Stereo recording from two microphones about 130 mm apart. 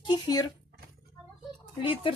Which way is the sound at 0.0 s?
35° left (ahead or behind).